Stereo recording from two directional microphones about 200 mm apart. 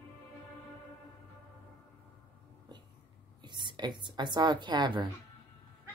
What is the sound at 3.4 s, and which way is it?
A woman's voice, 20° right (ahead or behind).